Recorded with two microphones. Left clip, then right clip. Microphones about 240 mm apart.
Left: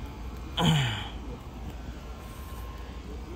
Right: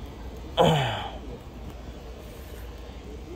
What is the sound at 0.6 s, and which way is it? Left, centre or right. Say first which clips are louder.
Gasp: right 7 dB; centre.